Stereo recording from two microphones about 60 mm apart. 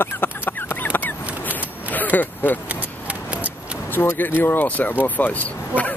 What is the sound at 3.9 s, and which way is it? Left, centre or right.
Speech, left.